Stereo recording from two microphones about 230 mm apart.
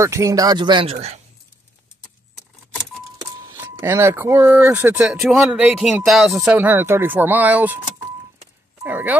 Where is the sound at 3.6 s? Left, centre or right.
Centre.